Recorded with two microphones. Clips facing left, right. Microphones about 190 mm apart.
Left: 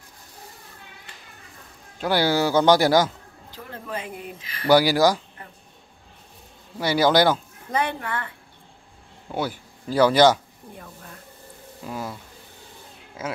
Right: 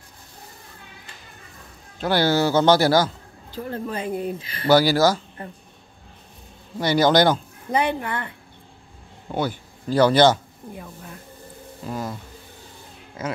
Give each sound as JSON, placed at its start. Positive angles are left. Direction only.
{"t": 2.0, "sound": "speech", "side_deg": 10}
{"t": 3.5, "sound": "speech", "side_deg": -35}
{"t": 4.6, "sound": "speech", "side_deg": 15}
{"t": 6.8, "sound": "speech", "side_deg": 10}
{"t": 7.7, "sound": "a woman's voice", "side_deg": -15}
{"t": 9.3, "sound": "speech", "side_deg": 5}
{"t": 10.7, "sound": "a woman's voice", "side_deg": -10}
{"t": 11.9, "sound": "speech", "side_deg": 5}